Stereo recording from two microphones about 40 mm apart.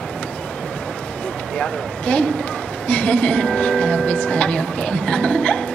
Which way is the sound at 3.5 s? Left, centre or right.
Centre.